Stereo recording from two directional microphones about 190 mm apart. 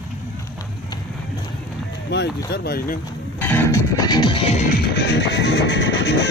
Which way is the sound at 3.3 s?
10° left (ahead or behind).